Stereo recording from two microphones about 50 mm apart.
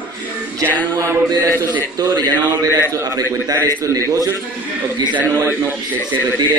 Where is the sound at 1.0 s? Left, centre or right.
Right.